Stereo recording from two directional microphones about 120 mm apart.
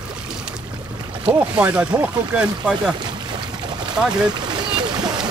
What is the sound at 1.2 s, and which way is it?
Speech, 10° right (ahead or behind).